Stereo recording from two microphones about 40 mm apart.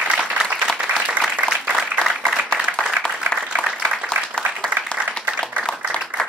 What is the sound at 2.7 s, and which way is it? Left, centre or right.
Applause, right.